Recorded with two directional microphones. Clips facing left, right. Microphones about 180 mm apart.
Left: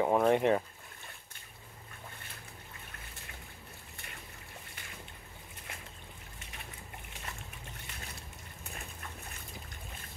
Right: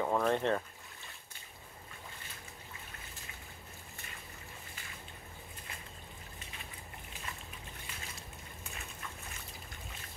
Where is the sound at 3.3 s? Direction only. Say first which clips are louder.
Left 2 dB; 60° left (ahead or behind).